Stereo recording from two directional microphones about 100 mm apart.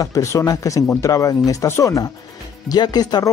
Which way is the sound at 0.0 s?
30° left (ahead or behind).